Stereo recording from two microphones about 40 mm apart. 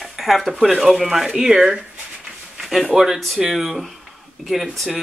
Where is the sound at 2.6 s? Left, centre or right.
Centre.